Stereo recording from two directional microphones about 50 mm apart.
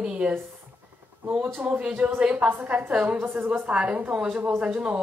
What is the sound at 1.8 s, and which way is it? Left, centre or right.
A woman's voice, right.